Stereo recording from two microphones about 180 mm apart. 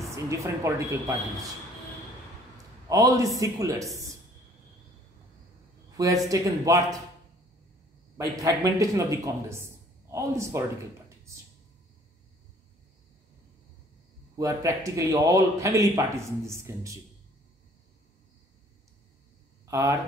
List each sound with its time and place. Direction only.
0.0 s a woman's voice: 15° right (ahead or behind)
2.5 s a man's voice: 20° right (ahead or behind)
6.2 s speech: 20° right (ahead or behind)
8.2 s speech: 20° right (ahead or behind)
14.4 s speech: 15° right (ahead or behind)
19.6 s speech: 15° right (ahead or behind)